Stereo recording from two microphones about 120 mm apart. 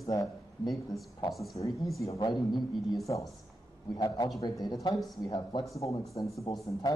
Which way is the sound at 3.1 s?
35° left (ahead or behind).